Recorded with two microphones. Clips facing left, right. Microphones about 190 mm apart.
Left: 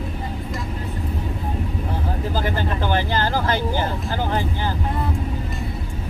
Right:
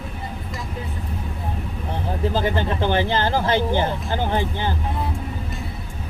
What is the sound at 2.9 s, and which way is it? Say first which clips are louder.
Speech: right 1 dB; 20° right (ahead or behind).